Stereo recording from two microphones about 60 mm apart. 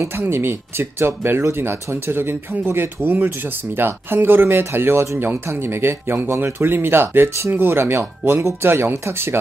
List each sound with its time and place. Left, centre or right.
0.0 s speech: right